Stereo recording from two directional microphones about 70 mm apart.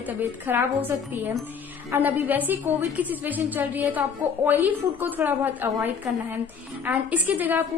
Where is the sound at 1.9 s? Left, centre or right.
Right.